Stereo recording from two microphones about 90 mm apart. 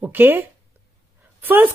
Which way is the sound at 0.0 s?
20° right (ahead or behind).